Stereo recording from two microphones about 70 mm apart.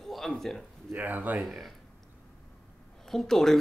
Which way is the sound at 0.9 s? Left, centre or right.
Right.